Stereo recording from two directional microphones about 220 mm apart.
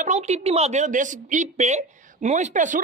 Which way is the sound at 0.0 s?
30° right (ahead or behind).